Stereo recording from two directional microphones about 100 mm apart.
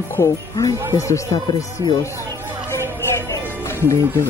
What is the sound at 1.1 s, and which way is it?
Speech, 30° left (ahead or behind).